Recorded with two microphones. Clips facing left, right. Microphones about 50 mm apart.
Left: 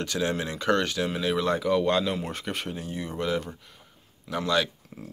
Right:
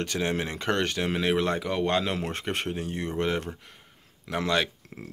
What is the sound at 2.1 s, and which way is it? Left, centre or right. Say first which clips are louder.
Speech: right 2 dB; right.